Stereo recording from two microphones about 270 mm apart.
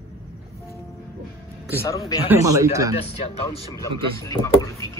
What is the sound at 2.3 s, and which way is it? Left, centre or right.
Speech, centre.